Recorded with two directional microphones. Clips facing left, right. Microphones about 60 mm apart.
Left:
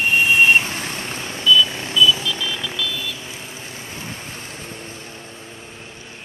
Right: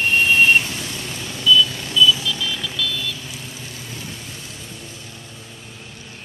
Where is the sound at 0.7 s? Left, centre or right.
Left.